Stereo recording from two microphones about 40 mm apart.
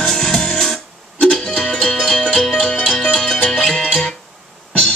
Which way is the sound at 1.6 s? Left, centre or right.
Left.